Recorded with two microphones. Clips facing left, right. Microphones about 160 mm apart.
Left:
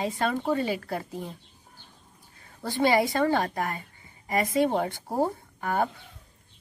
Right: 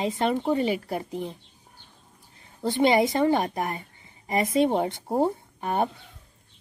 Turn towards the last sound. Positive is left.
turn(degrees=-20)  # may be behind; listen again after turning